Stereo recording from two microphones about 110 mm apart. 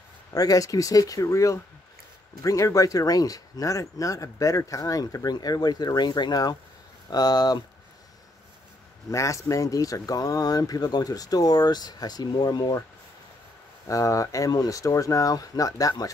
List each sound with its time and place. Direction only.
0.3 s speech: 35° left (ahead or behind)
9.1 s speech: 30° left (ahead or behind)
13.8 s speech: 30° left (ahead or behind)